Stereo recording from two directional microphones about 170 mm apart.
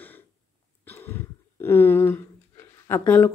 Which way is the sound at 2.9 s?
15° left (ahead or behind).